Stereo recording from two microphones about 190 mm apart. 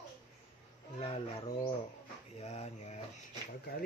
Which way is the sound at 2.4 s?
35° left (ahead or behind).